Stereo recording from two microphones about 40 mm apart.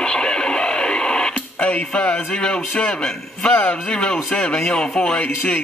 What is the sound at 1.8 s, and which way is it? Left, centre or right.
Speech, left.